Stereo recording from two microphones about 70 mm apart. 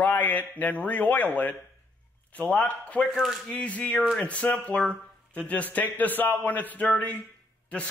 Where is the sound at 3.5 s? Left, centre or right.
Centre.